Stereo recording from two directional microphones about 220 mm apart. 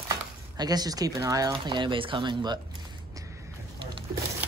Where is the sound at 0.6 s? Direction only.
15° right (ahead or behind).